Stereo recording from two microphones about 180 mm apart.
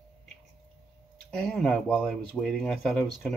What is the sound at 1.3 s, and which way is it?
Speech, 5° left (ahead or behind).